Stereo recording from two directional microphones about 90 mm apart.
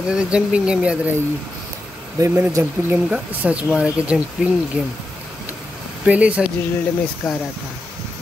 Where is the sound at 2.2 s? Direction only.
30° right (ahead or behind).